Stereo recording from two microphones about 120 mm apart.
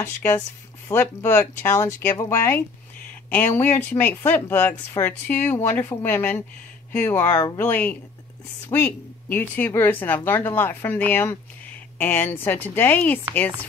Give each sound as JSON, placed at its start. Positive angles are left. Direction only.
{"t": 0.0, "sound": "speech", "side_deg": 20}